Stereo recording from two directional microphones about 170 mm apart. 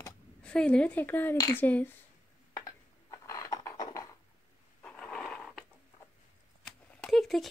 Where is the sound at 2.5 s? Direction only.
20° left (ahead or behind).